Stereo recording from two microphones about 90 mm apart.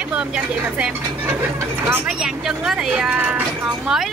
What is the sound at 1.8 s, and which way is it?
Speech, 25° right (ahead or behind).